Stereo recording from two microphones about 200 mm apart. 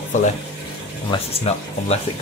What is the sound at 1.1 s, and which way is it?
Speech, 25° left (ahead or behind).